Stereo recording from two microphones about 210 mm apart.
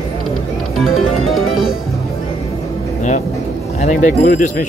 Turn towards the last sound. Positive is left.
turn(degrees=40)  # may be behind; listen again after turning